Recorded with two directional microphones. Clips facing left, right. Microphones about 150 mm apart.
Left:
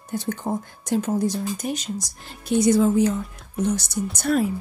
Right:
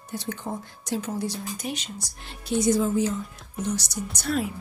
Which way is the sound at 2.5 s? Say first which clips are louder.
Left 5 dB; 65° left (ahead or behind).